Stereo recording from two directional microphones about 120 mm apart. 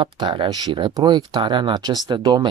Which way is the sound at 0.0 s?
45° right (ahead or behind).